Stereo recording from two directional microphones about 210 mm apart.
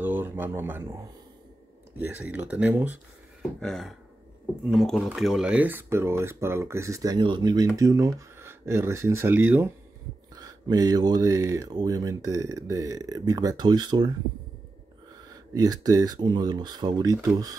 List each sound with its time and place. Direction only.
0.0 s speech: 10° right (ahead or behind)
3.6 s a sound: centre (ahead or behind)
4.6 s speech: centre (ahead or behind); by 14.1 s 20° right (ahead or behind)
15.2 s speech: 20° right (ahead or behind)